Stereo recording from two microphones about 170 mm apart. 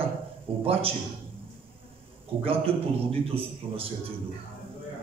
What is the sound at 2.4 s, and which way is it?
A man's voice, 35° right (ahead or behind).